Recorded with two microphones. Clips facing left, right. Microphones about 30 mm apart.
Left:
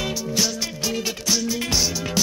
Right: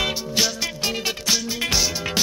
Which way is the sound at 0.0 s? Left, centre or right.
Right.